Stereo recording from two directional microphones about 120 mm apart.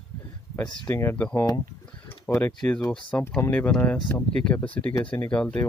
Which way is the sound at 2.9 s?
10° left (ahead or behind).